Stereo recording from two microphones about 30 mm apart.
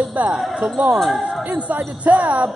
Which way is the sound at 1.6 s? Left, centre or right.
Right.